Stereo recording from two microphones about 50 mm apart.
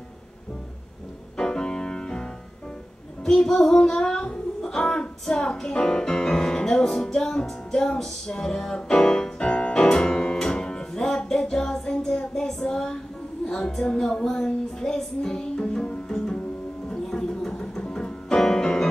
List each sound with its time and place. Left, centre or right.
1.3 s music: centre
3.3 s child singing: centre
13.5 s music: centre